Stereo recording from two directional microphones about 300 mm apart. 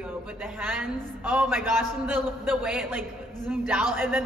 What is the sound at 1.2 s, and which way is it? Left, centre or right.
A woman's voice, centre.